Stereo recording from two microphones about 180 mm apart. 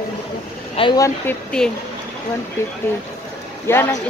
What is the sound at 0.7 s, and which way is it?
Speech, 25° left (ahead or behind).